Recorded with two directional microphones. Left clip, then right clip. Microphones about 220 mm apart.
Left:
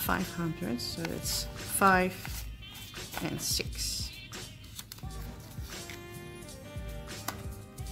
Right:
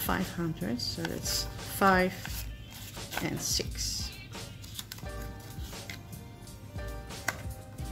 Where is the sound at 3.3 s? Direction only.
15° left (ahead or behind).